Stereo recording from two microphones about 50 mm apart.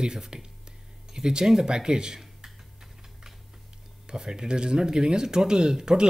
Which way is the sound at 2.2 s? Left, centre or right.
Centre.